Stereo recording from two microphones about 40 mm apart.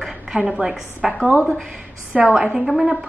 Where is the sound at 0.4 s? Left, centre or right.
Centre.